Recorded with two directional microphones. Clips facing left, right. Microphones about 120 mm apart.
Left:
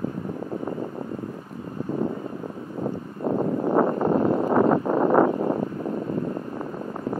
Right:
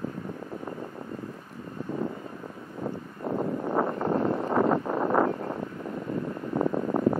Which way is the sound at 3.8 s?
45° left (ahead or behind).